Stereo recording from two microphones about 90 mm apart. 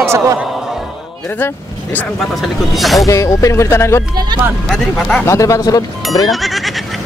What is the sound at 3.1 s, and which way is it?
Speech, 35° left (ahead or behind).